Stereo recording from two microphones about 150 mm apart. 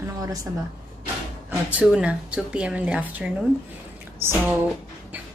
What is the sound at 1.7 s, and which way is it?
Speech, 10° right (ahead or behind).